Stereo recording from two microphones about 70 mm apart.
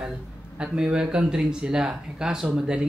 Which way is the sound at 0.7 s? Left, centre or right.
Centre.